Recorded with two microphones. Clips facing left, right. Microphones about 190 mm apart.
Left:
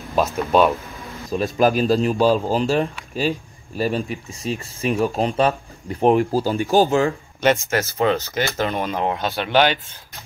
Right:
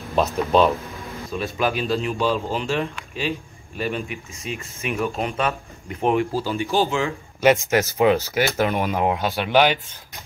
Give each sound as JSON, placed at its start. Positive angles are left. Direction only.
{"t": 0.1, "sound": "speech", "side_deg": 5}
{"t": 1.3, "sound": "speech", "side_deg": 40}
{"t": 7.3, "sound": "speech", "side_deg": -10}